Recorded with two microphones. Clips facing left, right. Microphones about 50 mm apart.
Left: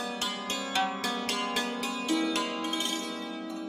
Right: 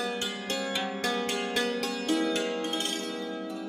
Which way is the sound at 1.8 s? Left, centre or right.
Right.